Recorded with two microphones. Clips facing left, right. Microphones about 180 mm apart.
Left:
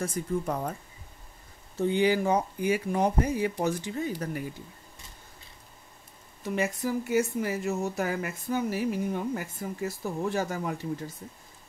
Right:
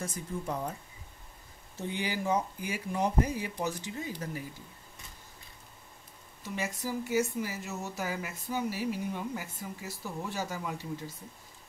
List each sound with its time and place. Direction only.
0.0 s speech: 60° left (ahead or behind)
1.8 s speech: 60° left (ahead or behind)
6.4 s speech: 60° left (ahead or behind)